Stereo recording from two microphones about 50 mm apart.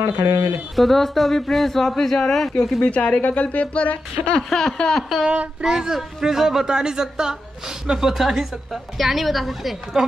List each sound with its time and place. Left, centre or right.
0.0 s speech: right
0.7 s speech: centre
2.8 s a woman's voice: left
4.5 s a sound: centre
4.8 s a man's voice: centre